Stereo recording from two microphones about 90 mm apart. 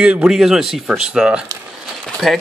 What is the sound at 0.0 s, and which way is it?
Speech, 10° right (ahead or behind).